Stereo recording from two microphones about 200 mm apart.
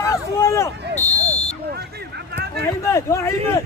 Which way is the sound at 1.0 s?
35° left (ahead or behind).